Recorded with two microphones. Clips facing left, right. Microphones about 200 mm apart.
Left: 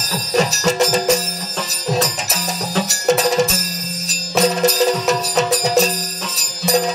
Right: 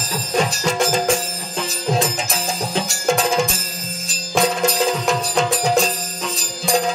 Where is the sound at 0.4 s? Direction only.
40° left (ahead or behind).